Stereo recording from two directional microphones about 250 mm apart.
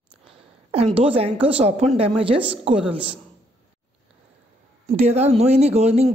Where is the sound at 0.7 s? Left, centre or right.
Right.